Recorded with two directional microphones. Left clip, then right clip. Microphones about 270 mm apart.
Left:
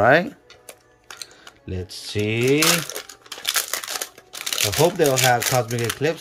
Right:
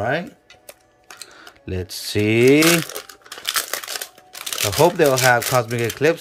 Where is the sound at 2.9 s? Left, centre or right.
Centre.